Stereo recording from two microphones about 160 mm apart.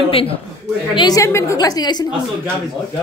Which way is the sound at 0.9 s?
25° left (ahead or behind).